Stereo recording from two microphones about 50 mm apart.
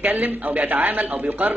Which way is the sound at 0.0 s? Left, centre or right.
Right.